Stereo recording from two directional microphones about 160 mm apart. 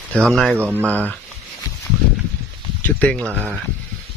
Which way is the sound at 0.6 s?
10° right (ahead or behind).